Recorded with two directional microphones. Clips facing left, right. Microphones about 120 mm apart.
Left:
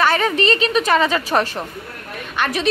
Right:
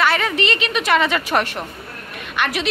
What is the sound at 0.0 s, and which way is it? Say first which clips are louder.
A woman's voice: left 2 dB; 35° left (ahead or behind).